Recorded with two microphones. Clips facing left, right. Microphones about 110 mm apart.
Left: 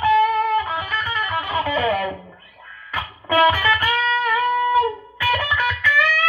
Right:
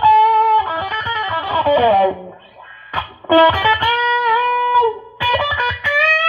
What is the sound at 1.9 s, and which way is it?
Music, 35° right (ahead or behind).